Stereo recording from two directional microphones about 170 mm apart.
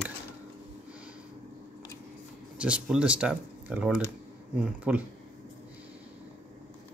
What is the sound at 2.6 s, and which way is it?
Speech, 5° right (ahead or behind).